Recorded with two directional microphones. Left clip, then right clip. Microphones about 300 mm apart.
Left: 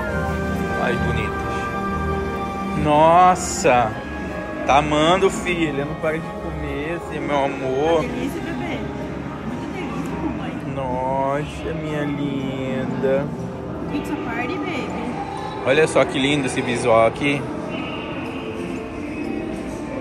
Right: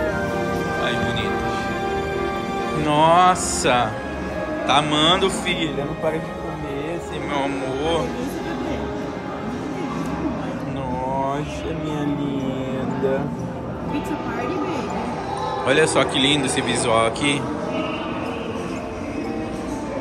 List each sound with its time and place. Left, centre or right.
2.9 s speech: centre
7.2 s speech: centre
15.6 s speech: centre